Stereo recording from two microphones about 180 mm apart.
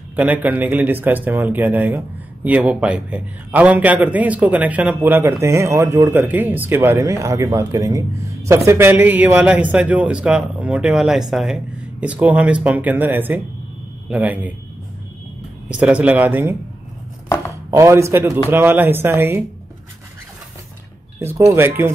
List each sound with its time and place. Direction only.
0.1 s speech: 10° right (ahead or behind)
15.7 s speech: 5° right (ahead or behind)
17.6 s speech: 15° right (ahead or behind)
21.2 s speech: 15° right (ahead or behind)